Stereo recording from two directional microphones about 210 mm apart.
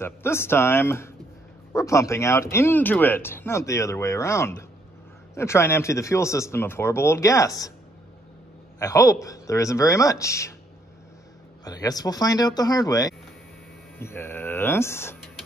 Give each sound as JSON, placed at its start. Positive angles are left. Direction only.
{"t": 0.0, "sound": "speech", "side_deg": 10}
{"t": 8.7, "sound": "speech", "side_deg": 15}
{"t": 11.6, "sound": "speech", "side_deg": 15}